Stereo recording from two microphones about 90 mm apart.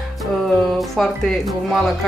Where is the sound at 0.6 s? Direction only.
Centre (ahead or behind).